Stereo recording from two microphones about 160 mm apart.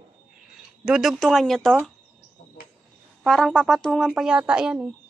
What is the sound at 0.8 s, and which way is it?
Speech, 5° right (ahead or behind).